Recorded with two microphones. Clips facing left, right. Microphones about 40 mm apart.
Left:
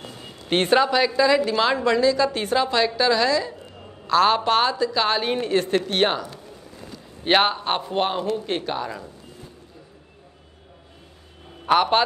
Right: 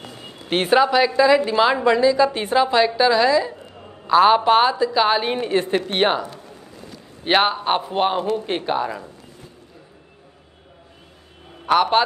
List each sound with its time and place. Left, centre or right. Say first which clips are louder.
0.1 s a sound: right 2 dB; centre
0.5 s a woman's voice: right 2 dB; centre
7.2 s a woman's voice: right 2 dB; centre
11.6 s a man's voice: right 2 dB; centre